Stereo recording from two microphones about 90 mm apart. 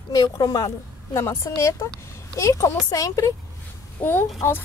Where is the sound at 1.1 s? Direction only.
30° left (ahead or behind).